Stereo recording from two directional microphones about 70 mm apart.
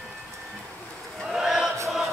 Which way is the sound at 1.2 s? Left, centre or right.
Centre.